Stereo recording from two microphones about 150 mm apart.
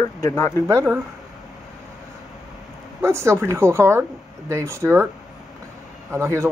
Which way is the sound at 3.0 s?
20° right (ahead or behind).